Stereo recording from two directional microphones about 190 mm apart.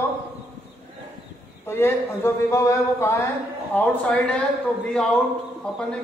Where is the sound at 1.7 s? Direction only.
15° left (ahead or behind).